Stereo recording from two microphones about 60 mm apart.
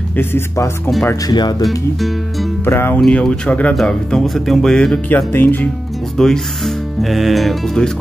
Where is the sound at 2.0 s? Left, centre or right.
Centre.